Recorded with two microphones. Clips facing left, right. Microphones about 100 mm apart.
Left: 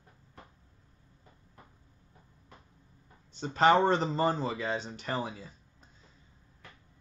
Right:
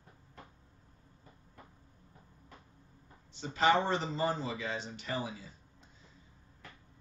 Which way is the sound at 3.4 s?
45° left (ahead or behind).